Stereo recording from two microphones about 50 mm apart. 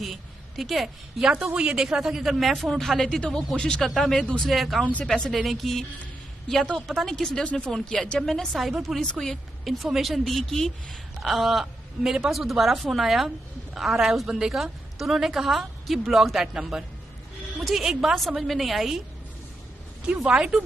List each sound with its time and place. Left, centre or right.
0.0 s a sound: centre
1.3 s a woman's voice: centre
3.2 s speech: centre
4.5 s speech: centre
5.0 s speech: centre
5.3 s speech: centre
11.1 s a sound: centre
12.0 s speech: centre
20.1 s speech: centre